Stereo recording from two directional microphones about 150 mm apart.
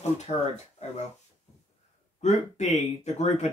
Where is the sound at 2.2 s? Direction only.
50° left (ahead or behind).